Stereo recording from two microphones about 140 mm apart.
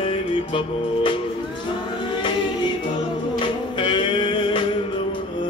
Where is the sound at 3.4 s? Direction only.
35° left (ahead or behind).